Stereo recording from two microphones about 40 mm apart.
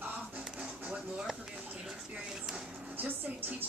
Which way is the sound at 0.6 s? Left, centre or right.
Right.